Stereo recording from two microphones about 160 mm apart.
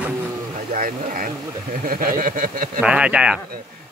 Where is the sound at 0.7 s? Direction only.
55° right (ahead or behind).